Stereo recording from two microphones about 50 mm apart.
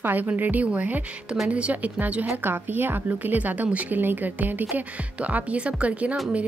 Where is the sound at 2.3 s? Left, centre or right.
Right.